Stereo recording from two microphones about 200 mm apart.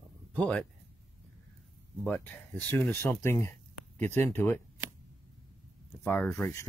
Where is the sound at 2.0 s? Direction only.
10° left (ahead or behind).